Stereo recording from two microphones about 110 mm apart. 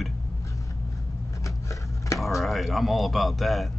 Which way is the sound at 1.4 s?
30° left (ahead or behind).